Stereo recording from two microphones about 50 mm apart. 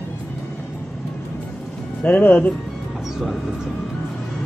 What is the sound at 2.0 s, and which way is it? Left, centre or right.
Speech, left.